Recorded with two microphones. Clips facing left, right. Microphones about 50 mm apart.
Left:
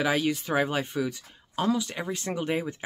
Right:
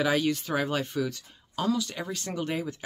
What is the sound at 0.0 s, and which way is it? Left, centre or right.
Speech, centre.